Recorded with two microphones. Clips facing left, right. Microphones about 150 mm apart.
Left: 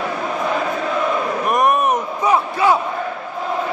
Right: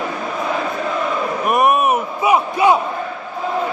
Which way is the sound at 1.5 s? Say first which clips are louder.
Right 2 dB; 5° right (ahead or behind).